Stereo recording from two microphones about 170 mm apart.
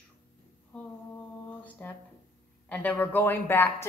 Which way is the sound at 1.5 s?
10° left (ahead or behind).